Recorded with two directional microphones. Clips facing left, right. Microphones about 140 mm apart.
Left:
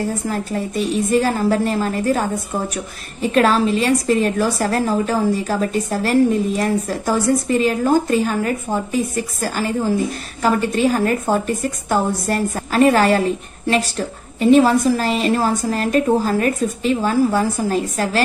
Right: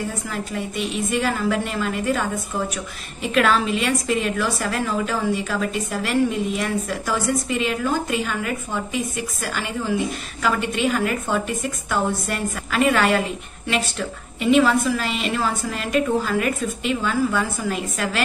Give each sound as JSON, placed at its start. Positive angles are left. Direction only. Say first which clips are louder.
{"t": 0.3, "sound": "a woman's voice", "louder": "left 5 dB", "side_deg": 40}